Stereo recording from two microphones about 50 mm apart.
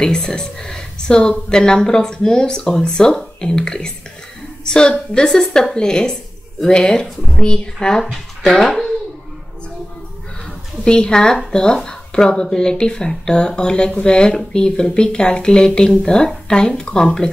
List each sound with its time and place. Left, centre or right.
0.0 s a woman's voice: centre
8.0 s a woman's voice: centre
10.8 s a woman's voice: centre